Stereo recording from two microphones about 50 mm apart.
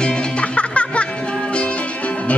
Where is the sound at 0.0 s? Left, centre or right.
Centre.